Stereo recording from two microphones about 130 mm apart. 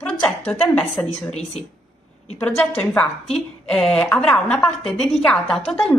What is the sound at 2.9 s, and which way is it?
A woman's voice, 5° left (ahead or behind).